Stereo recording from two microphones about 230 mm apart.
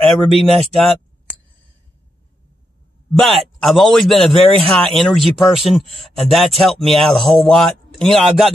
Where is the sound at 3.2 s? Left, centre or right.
Centre.